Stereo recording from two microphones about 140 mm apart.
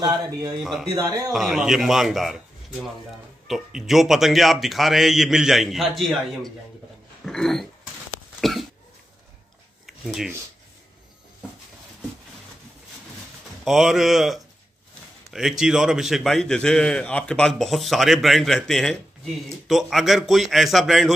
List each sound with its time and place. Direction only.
0.0 s speech: 30° right (ahead or behind)
0.6 s a man's voice: centre (ahead or behind)
0.8 s speech: 25° right (ahead or behind)
1.3 s a man's voice: centre (ahead or behind)
7.2 s dog: 5° left (ahead or behind)
8.4 s cough: centre (ahead or behind)
10.0 s a man's voice: centre (ahead or behind)
13.7 s a man's voice: centre (ahead or behind)